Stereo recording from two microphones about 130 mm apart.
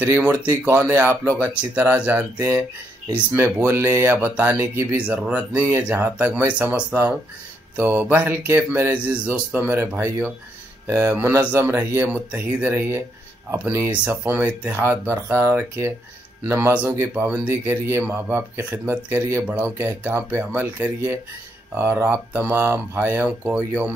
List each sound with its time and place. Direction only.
0.0 s speech: 15° right (ahead or behind)